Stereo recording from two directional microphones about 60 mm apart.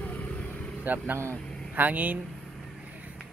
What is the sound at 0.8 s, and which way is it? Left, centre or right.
Speech, right.